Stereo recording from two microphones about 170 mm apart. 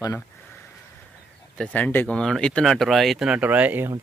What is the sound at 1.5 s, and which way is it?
Speech, 10° left (ahead or behind).